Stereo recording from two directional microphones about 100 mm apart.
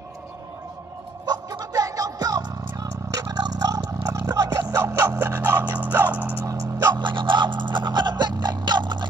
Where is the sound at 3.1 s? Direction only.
40° right (ahead or behind); by 6.4 s 20° right (ahead or behind).